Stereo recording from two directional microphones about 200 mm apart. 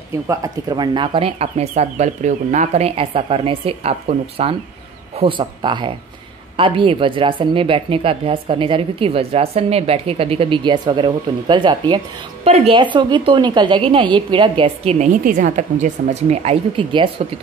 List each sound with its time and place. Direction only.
0.3 s speech: 20° right (ahead or behind)